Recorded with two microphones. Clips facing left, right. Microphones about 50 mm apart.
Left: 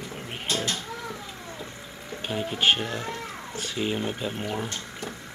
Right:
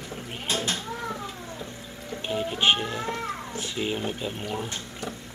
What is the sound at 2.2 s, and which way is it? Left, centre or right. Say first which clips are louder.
Music: right 1 dB; centre.